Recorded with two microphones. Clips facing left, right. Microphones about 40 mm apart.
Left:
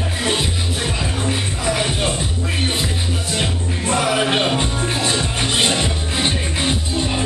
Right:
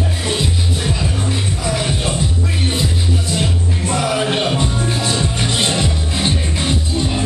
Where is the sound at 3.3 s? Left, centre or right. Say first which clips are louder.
Right 2 dB; left.